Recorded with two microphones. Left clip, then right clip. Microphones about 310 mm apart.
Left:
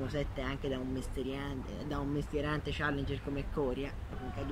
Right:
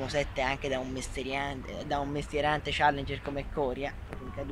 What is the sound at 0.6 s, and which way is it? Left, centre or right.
Speech, right.